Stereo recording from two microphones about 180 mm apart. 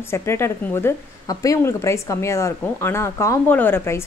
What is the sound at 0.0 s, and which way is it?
A woman's voice, 15° left (ahead or behind).